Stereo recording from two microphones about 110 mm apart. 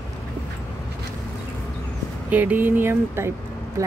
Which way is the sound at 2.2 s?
15° right (ahead or behind).